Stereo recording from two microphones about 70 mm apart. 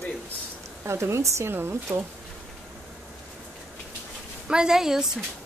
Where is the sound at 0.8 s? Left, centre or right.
Right.